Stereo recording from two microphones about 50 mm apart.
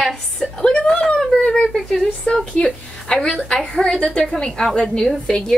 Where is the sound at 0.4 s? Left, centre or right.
Centre.